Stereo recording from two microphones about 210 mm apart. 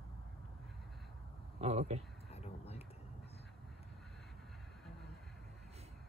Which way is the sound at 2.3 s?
30° left (ahead or behind).